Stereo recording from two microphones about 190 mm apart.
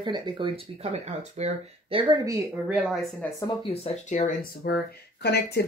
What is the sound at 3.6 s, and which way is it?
Speech, 35° left (ahead or behind).